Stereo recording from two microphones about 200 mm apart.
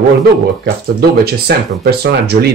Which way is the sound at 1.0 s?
50° right (ahead or behind).